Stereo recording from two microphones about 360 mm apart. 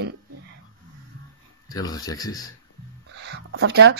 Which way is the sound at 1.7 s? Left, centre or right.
Centre.